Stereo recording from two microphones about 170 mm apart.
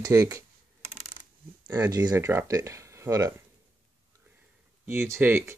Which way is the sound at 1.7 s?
25° right (ahead or behind).